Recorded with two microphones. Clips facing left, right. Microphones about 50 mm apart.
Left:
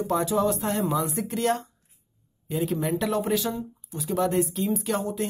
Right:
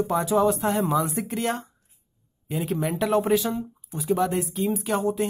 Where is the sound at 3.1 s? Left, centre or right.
Right.